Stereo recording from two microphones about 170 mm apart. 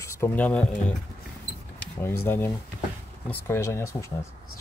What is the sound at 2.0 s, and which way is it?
Speech, 10° left (ahead or behind).